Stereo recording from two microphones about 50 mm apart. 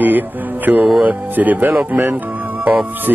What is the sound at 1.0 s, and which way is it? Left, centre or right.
Speech, right.